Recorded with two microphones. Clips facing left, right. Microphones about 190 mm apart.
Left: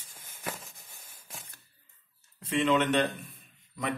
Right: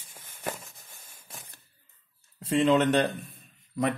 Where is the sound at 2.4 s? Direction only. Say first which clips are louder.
Right 4 dB; 35° right (ahead or behind).